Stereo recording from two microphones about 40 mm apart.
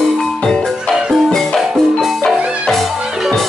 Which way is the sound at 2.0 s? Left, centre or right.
Centre.